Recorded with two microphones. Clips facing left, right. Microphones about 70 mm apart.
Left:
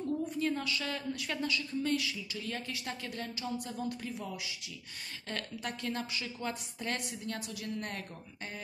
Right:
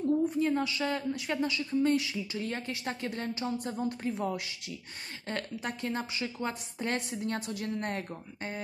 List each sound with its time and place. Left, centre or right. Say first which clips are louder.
0.2 s a woman's voice: right 5 dB; right
5.3 s a woman's voice: right 4 dB; right